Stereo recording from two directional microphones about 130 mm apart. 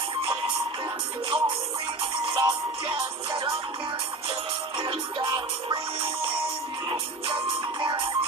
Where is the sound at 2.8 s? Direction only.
40° right (ahead or behind).